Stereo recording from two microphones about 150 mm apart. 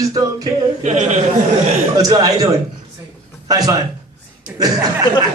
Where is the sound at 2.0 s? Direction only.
25° right (ahead or behind).